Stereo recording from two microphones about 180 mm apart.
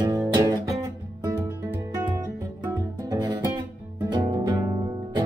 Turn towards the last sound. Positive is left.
turn(degrees=-20)  # may be behind; listen again after turning